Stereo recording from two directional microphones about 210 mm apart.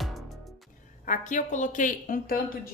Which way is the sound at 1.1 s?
35° left (ahead or behind).